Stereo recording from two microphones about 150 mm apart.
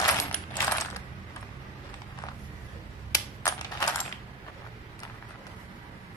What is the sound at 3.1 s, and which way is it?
Typewriter, 25° left (ahead or behind).